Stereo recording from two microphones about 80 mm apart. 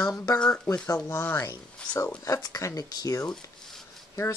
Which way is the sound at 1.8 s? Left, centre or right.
Centre.